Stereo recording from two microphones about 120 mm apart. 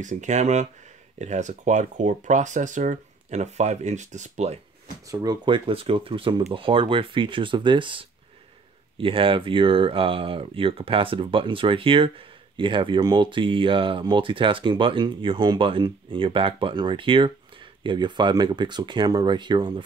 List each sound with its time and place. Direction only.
0.0 s speech: 85° right
1.2 s speech: 85° right
5.0 s speech: 30° right (ahead or behind)